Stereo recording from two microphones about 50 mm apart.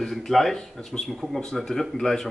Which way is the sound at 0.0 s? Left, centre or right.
Centre.